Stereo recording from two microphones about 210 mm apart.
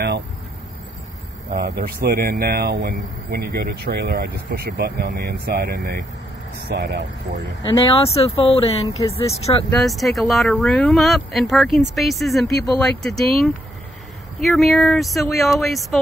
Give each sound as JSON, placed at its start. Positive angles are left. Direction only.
{"t": 1.5, "sound": "speech", "side_deg": -45}
{"t": 7.8, "sound": "speech", "side_deg": 25}
{"t": 9.7, "sound": "speech", "side_deg": 0}
{"t": 12.4, "sound": "speech", "side_deg": 15}
{"t": 13.0, "sound": "speech", "side_deg": 0}